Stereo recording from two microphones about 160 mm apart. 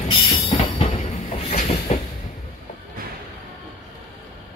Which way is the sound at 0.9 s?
45° left (ahead or behind).